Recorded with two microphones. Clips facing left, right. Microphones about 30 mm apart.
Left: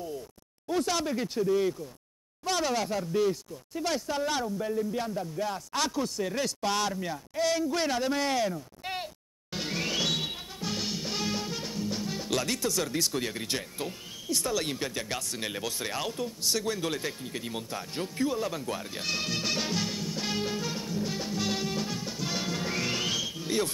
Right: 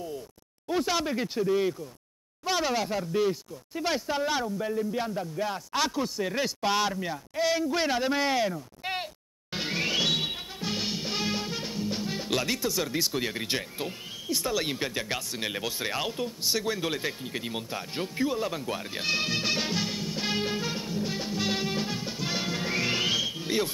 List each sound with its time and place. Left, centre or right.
0.7 s speech: centre